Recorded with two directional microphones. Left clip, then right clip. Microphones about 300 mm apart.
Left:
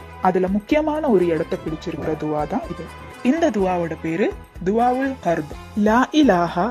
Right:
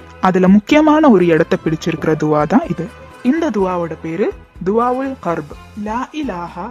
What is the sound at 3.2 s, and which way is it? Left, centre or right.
Speech, centre.